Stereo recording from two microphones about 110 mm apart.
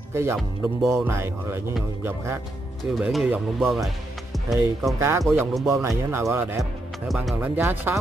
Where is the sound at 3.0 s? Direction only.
5° right (ahead or behind).